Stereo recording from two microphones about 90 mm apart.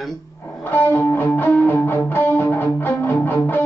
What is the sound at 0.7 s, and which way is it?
Music, 25° left (ahead or behind).